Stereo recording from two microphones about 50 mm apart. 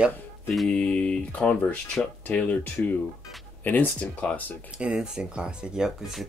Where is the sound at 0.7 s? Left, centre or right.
Left.